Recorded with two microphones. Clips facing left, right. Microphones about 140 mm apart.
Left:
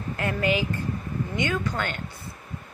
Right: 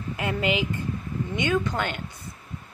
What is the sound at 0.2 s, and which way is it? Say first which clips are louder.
A woman's voice: left 1 dB; 20° right (ahead or behind).